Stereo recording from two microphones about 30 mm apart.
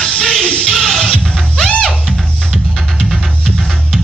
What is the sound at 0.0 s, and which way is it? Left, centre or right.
Music, left.